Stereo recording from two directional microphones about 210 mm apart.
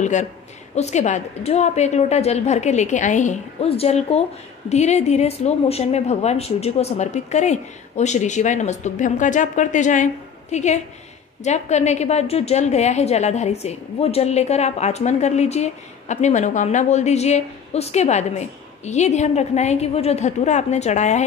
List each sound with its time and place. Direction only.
0.0 s a woman's voice: 35° left (ahead or behind)